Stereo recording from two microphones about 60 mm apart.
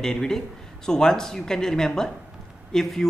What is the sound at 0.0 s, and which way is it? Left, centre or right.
Speech, centre.